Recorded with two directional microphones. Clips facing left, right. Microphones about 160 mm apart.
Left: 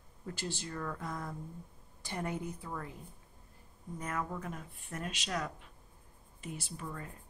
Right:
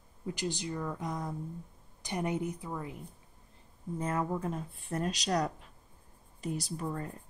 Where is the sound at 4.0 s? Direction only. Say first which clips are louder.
Right 6 dB; 30° right (ahead or behind).